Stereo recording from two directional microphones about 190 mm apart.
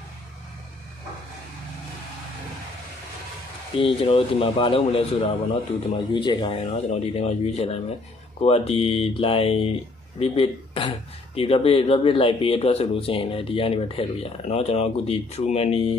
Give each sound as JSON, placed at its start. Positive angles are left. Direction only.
{"t": 3.7, "sound": "speech", "side_deg": 30}